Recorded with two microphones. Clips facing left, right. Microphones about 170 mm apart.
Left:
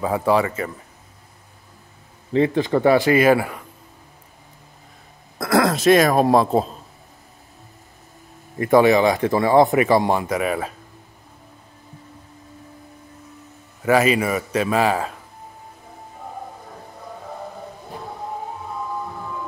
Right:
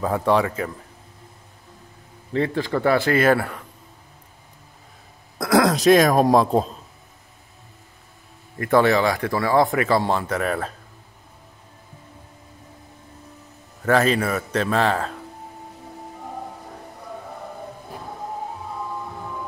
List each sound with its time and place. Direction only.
0.0 s speech: 5° left (ahead or behind)
2.3 s speech: 20° left (ahead or behind)
5.4 s speech: centre (ahead or behind)
8.5 s speech: 15° left (ahead or behind)
13.8 s speech: 10° left (ahead or behind)